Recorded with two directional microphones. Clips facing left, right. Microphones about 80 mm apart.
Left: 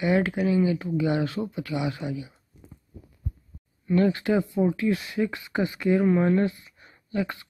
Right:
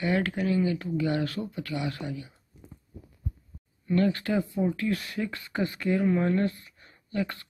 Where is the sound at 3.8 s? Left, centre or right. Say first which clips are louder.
Left 3 dB; centre.